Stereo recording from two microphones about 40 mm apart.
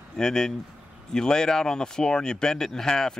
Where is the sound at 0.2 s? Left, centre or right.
Centre.